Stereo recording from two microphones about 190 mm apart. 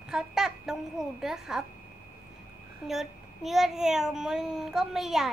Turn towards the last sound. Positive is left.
turn(degrees=0)  # may be behind; listen again after turning